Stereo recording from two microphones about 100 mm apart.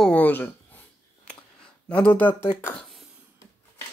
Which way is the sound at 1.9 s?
15° left (ahead or behind).